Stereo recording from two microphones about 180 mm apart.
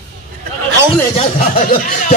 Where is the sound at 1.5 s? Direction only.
50° left (ahead or behind).